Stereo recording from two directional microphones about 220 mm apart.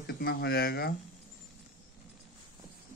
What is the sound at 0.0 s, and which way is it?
Speech, 45° left (ahead or behind).